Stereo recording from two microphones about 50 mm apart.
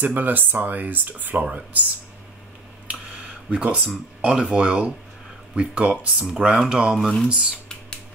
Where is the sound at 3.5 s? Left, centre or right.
Right.